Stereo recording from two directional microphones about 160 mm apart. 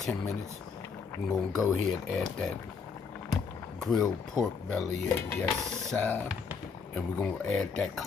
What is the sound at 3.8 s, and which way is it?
Speech, 5° left (ahead or behind).